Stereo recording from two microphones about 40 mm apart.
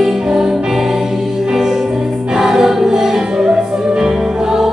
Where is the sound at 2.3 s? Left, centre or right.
Centre.